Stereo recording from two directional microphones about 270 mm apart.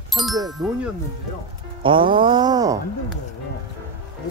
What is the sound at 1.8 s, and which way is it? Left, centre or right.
Speech, centre.